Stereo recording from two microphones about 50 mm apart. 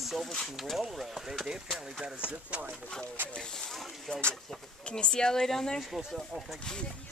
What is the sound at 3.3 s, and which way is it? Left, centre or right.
Speech, centre.